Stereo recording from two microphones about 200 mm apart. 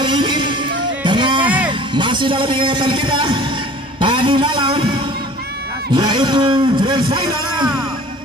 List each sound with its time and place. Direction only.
0.0 s music: 25° right (ahead or behind)
1.7 s a man's voice: 25° right (ahead or behind)
5.9 s a man's voice: 20° right (ahead or behind)